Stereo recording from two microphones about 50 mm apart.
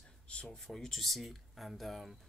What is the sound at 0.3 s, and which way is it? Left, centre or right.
Speech, left.